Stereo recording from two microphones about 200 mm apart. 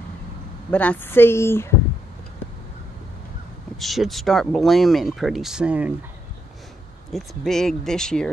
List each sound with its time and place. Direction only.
0.7 s a woman's voice: 5° left (ahead or behind)
3.8 s speech: centre (ahead or behind)
7.1 s speech: centre (ahead or behind)